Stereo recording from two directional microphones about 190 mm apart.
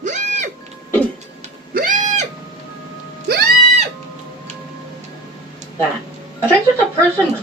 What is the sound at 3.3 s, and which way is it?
Music, 55° right (ahead or behind).